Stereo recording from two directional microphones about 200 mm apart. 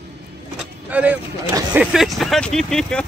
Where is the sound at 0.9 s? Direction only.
5° right (ahead or behind).